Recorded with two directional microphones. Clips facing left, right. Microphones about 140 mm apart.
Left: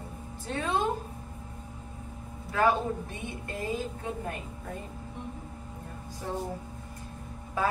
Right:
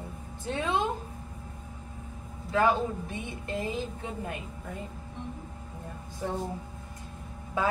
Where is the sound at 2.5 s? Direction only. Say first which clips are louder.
Even; 20° right (ahead or behind).